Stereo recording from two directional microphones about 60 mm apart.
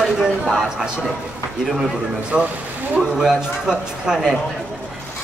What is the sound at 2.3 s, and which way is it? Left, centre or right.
Speech, centre.